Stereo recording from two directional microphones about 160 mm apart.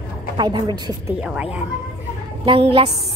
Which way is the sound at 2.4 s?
35° right (ahead or behind).